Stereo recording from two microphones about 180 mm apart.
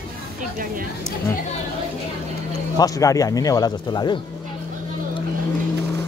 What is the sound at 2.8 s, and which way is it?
Speech, 20° left (ahead or behind).